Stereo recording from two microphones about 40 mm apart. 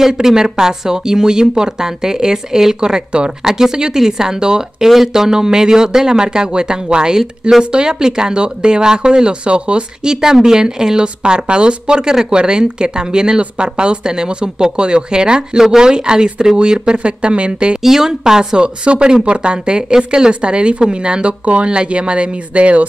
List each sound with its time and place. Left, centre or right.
0.0 s speech: centre
10.2 s speech: centre
17.8 s speech: centre; by 22.8 s right